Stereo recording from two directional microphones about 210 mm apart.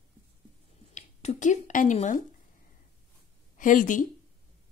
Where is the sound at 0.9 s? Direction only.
35° left (ahead or behind).